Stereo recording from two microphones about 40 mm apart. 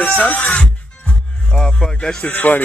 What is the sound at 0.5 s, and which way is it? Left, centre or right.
Music, left.